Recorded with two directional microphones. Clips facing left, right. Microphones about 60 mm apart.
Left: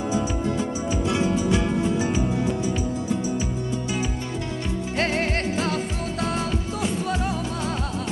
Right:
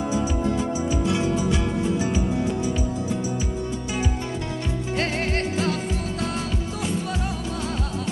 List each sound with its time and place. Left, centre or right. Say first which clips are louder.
1.0 s music: left 3 dB; left
4.9 s music: left 1 dB; left